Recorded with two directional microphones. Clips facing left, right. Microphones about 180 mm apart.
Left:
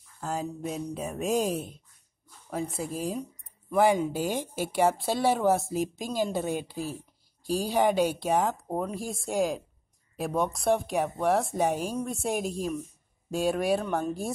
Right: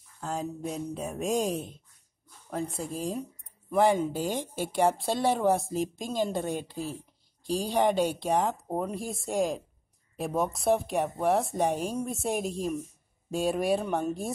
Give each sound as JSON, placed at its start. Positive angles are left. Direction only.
{"t": 0.2, "sound": "a woman's voice", "side_deg": 5}